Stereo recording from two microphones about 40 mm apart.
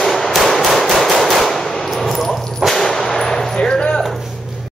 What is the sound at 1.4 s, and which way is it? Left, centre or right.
Gunshot, centre.